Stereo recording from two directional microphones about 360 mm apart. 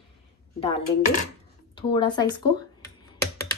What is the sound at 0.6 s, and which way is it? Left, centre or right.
A woman's voice, centre.